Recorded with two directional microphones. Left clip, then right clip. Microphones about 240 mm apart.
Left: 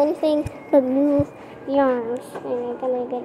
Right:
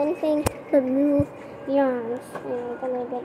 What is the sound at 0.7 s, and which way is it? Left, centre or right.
A woman's voice, centre.